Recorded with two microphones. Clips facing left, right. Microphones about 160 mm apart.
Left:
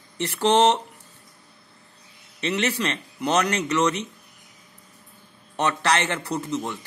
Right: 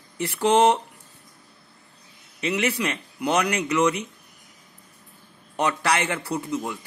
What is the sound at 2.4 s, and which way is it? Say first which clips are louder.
Speech: even; 10° right (ahead or behind).